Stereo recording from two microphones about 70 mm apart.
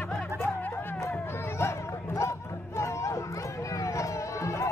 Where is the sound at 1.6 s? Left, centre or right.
Left.